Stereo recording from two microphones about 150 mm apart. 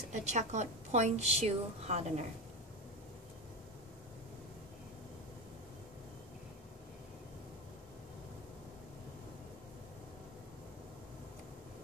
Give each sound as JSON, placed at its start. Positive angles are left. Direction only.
{"t": 0.1, "sound": "a woman's voice", "side_deg": -50}